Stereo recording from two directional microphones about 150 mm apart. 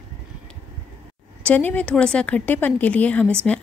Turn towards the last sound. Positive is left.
turn(degrees=10)  # may be behind; listen again after turning